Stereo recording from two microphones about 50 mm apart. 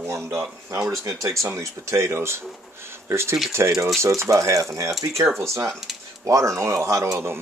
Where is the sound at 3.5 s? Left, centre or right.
Right.